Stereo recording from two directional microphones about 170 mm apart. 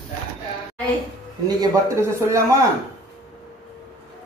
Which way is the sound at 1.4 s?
20° right (ahead or behind).